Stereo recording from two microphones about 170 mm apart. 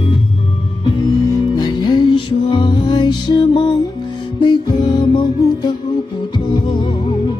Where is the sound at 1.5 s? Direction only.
25° left (ahead or behind).